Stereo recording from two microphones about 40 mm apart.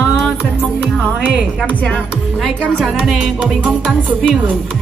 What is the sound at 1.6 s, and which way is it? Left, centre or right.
Speech, left.